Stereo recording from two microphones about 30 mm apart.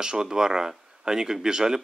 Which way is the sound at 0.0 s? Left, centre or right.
Right.